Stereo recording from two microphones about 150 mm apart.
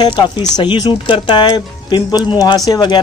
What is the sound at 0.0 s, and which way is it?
Speech, 30° left (ahead or behind).